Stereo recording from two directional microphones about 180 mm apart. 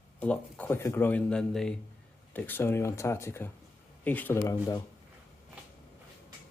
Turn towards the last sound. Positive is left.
turn(degrees=20)  # may be behind; listen again after turning